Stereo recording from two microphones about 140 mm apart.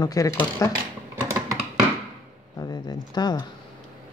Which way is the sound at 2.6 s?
30° left (ahead or behind).